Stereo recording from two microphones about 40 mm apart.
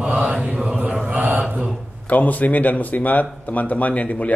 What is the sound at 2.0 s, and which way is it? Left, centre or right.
Speech, left.